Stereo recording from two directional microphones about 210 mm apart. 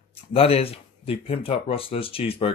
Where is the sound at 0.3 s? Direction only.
25° left (ahead or behind).